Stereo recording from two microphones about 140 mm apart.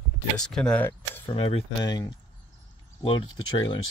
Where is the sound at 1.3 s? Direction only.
45° left (ahead or behind).